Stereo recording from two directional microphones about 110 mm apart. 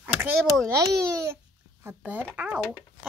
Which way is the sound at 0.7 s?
30° right (ahead or behind).